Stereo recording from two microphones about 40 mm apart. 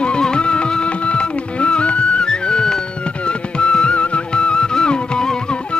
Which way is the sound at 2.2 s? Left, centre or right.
Left.